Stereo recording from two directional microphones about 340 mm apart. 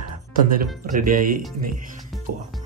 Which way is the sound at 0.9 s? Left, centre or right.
Right.